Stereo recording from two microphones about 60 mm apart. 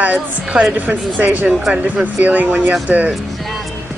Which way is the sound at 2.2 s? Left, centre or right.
Right.